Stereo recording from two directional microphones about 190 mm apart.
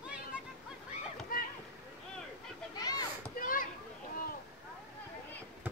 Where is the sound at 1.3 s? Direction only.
50° left (ahead or behind).